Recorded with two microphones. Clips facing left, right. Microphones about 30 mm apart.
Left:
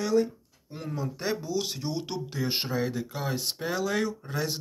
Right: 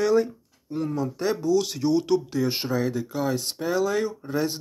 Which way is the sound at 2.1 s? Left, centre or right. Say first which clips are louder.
Right 8 dB; left.